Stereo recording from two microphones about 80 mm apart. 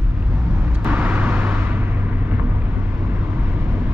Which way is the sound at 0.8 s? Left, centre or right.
Centre.